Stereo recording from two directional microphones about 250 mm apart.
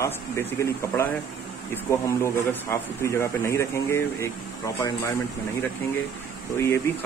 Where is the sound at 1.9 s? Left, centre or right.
Centre.